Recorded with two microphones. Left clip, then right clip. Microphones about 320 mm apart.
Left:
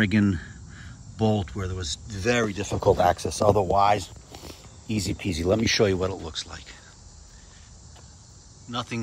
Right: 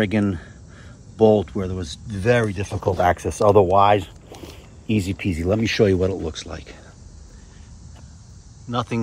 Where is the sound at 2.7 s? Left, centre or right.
Centre.